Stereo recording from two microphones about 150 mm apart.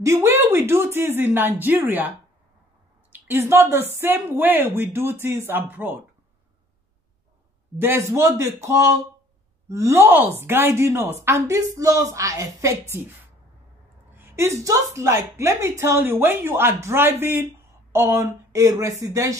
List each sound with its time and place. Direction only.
0.0 s a woman's voice: 20° right (ahead or behind)
7.8 s a woman's voice: 20° right (ahead or behind)
14.1 s a woman's voice: 15° right (ahead or behind)